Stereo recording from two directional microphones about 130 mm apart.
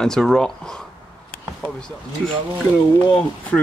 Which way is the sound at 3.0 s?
10° left (ahead or behind).